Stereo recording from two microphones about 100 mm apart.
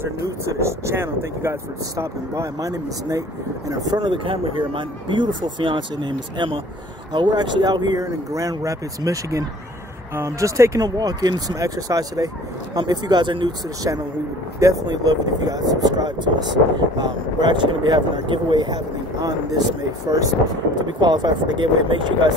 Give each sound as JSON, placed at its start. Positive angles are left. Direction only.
{"t": 0.0, "sound": "speech", "side_deg": -30}
{"t": 13.9, "sound": "speech", "side_deg": -35}
{"t": 20.1, "sound": "speech", "side_deg": -35}
{"t": 21.0, "sound": "speech", "side_deg": -45}